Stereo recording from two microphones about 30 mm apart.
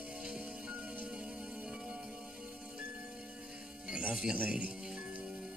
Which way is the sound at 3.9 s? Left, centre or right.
Right.